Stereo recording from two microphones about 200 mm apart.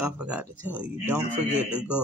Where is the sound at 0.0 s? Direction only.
5° right (ahead or behind).